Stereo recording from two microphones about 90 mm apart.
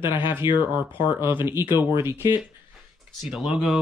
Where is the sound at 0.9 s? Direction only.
70° left (ahead or behind).